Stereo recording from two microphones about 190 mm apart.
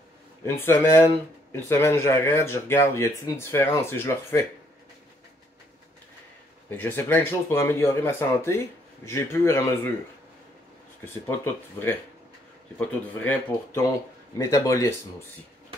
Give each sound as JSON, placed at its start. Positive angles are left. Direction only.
{"t": 0.6, "sound": "speech", "side_deg": 15}
{"t": 6.8, "sound": "speech", "side_deg": 10}
{"t": 11.2, "sound": "speech", "side_deg": 10}